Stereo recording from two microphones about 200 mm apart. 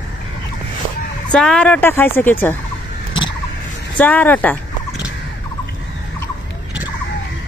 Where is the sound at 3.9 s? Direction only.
5° left (ahead or behind).